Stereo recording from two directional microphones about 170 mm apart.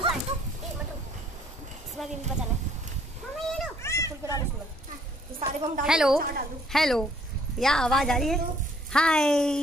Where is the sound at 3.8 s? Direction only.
15° left (ahead or behind).